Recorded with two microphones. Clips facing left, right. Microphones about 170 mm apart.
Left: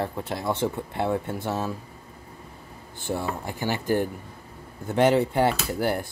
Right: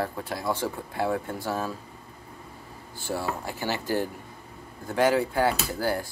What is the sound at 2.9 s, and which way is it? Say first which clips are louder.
Speech: left 1 dB; 20° left (ahead or behind).